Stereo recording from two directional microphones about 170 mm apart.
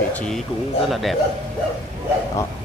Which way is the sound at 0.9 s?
Centre (ahead or behind).